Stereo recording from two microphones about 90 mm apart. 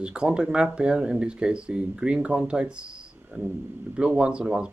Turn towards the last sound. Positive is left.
turn(degrees=-10)  # may be behind; listen again after turning